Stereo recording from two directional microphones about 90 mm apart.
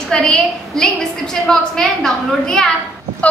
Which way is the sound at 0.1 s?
5° left (ahead or behind).